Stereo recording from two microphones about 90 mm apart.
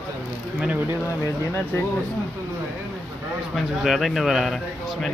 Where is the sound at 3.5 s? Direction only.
Centre (ahead or behind).